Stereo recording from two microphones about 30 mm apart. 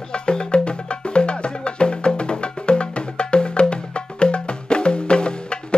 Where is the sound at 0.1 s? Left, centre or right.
Left.